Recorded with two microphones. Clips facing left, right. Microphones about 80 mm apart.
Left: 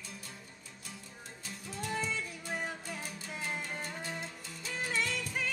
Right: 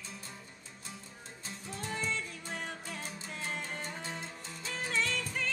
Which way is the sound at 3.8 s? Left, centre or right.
Right.